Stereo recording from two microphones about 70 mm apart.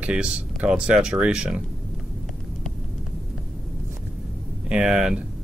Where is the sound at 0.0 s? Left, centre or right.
Centre.